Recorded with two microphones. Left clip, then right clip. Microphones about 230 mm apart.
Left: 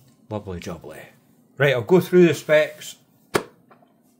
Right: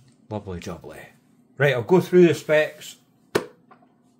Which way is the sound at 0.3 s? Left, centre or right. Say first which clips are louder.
Left 1 dB; centre.